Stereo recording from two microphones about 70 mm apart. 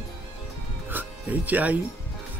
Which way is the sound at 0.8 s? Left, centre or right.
Right.